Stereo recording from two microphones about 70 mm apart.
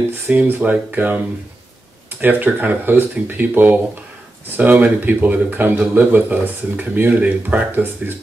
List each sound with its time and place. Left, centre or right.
0.3 s speech: right
2.2 s speech: right